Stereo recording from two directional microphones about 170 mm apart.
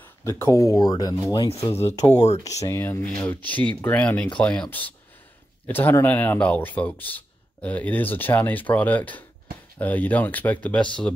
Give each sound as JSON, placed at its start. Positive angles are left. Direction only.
{"t": 0.0, "sound": "speech", "side_deg": 15}
{"t": 2.1, "sound": "speech", "side_deg": 40}
{"t": 2.4, "sound": "speech", "side_deg": 20}